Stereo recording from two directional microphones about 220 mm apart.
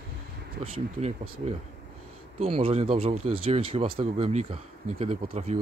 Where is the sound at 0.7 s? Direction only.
25° right (ahead or behind).